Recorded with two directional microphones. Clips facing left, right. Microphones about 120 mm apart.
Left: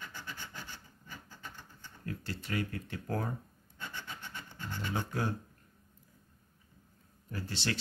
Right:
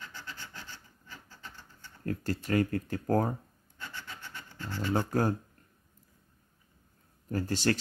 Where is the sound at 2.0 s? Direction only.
45° right (ahead or behind).